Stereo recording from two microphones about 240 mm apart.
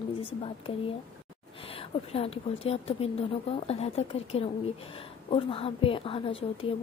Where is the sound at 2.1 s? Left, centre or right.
Left.